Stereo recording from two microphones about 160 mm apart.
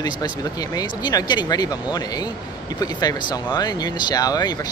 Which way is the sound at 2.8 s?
25° left (ahead or behind).